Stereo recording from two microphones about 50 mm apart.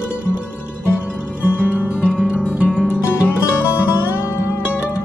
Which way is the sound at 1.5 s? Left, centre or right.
Left.